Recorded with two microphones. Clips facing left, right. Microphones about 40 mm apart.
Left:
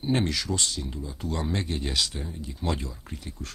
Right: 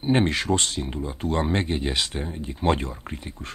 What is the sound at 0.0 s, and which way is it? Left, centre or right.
Speech, right.